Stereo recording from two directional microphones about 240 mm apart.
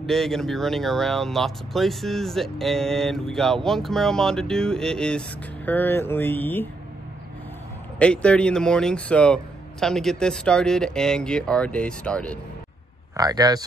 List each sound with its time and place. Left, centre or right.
0.0 s speech: centre
8.0 s speech: centre
13.1 s speech: centre